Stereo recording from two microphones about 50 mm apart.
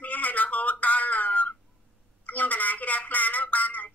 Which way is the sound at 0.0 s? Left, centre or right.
Left.